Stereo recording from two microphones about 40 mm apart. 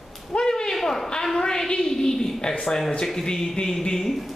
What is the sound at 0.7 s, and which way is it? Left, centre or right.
A woman's voice, centre.